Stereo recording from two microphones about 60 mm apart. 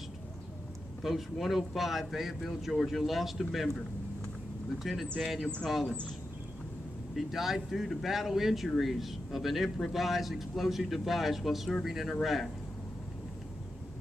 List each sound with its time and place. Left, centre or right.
1.0 s a man's voice: centre
5.0 s speech: centre
7.2 s a man's voice: centre